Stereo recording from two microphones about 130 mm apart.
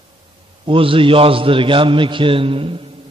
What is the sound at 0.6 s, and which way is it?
A man's voice, 45° right (ahead or behind).